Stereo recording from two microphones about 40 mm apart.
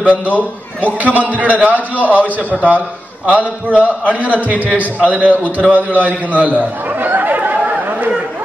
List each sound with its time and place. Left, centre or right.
0.0 s a man's voice: right